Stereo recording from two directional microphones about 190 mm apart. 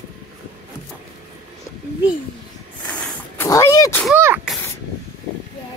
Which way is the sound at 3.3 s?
15° left (ahead or behind).